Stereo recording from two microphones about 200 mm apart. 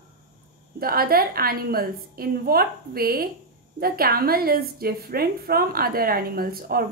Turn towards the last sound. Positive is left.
turn(degrees=-50)  # may be behind; listen again after turning